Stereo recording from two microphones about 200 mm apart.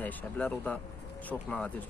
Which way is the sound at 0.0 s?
5° left (ahead or behind).